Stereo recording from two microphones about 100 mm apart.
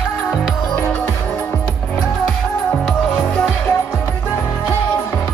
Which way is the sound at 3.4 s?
25° left (ahead or behind).